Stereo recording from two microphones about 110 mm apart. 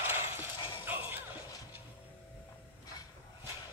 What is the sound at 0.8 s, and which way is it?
Music, 20° right (ahead or behind).